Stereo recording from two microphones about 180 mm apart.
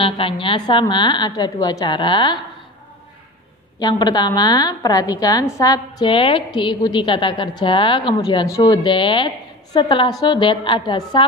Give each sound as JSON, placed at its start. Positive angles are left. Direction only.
{"t": 0.0, "sound": "a woman's voice", "side_deg": 30}
{"t": 3.8, "sound": "a woman's voice", "side_deg": 25}